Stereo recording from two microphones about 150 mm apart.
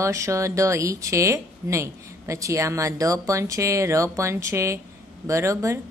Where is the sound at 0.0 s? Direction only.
20° right (ahead or behind).